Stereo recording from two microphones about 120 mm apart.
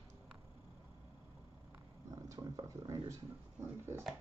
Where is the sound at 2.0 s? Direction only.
30° right (ahead or behind).